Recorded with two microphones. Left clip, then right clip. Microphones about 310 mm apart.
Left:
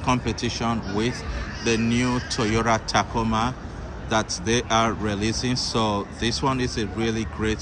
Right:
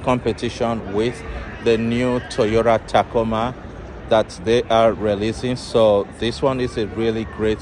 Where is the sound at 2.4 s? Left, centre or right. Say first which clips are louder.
Right 7 dB; centre.